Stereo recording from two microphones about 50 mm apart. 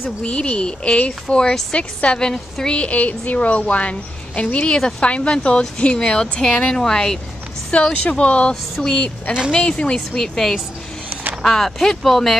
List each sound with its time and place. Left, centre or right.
0.2 s a woman's voice: left
2.7 s speech: left
6.4 s a woman's voice: centre